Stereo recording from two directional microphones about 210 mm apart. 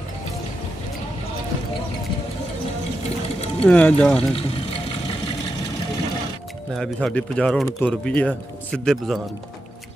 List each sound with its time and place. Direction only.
3.6 s speech: 5° left (ahead or behind)
4.4 s water: 25° left (ahead or behind)
6.7 s speech: centre (ahead or behind)